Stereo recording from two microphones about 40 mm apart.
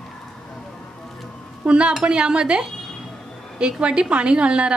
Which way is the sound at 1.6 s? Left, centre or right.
Right.